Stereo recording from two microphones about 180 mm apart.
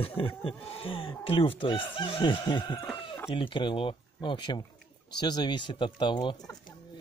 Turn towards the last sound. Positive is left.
turn(degrees=25)  # may be behind; listen again after turning